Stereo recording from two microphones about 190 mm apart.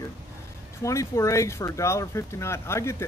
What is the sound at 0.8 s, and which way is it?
Speech, 15° left (ahead or behind).